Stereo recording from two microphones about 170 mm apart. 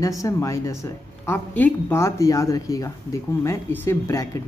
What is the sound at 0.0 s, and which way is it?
A woman's voice, 20° left (ahead or behind).